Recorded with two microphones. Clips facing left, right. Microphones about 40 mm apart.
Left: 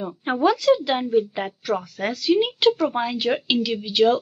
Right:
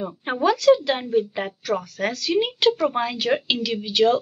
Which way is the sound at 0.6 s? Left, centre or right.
Centre.